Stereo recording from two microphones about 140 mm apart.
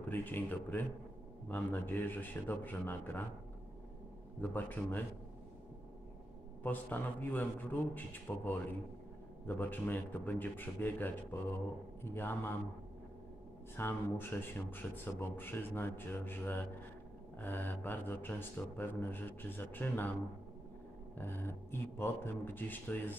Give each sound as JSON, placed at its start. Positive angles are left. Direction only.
{"t": 0.1, "sound": "speech", "side_deg": 15}
{"t": 4.4, "sound": "speech", "side_deg": 15}
{"t": 6.6, "sound": "speech", "side_deg": 10}
{"t": 13.7, "sound": "speech", "side_deg": 15}
{"t": 21.2, "sound": "speech", "side_deg": 15}